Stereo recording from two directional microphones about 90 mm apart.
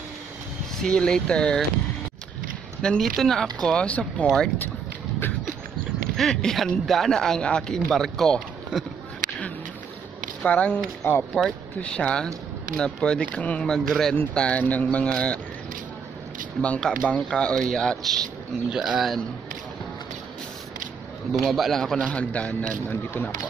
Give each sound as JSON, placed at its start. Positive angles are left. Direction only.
{"t": 0.7, "sound": "a man's voice", "side_deg": 10}
{"t": 2.8, "sound": "a man's voice", "side_deg": 5}
{"t": 6.1, "sound": "speech", "side_deg": 5}
{"t": 10.4, "sound": "a man's voice", "side_deg": 15}
{"t": 11.0, "sound": "speech", "side_deg": 30}
{"t": 11.8, "sound": "a man's voice", "side_deg": 10}
{"t": 16.6, "sound": "a man's voice", "side_deg": 15}
{"t": 18.7, "sound": "speech", "side_deg": -5}
{"t": 21.3, "sound": "a man's voice", "side_deg": 0}